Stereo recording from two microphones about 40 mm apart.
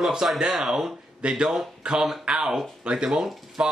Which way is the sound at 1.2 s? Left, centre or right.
Right.